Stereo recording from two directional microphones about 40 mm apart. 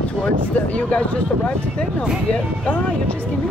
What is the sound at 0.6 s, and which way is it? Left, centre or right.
Speech, left.